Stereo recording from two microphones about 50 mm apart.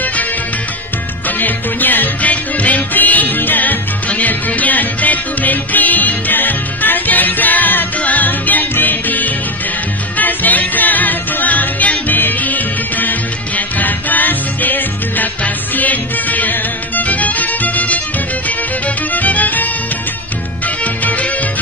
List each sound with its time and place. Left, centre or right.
1.4 s music: left
19.1 s music: left
20.8 s music: left